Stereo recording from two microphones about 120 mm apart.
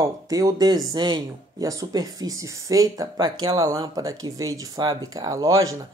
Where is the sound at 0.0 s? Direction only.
30° right (ahead or behind).